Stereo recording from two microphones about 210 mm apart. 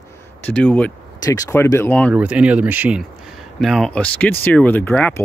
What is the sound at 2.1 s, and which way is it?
Speech, 5° right (ahead or behind).